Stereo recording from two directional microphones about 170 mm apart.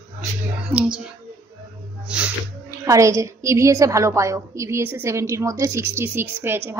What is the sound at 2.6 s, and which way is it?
A woman's voice, 20° right (ahead or behind).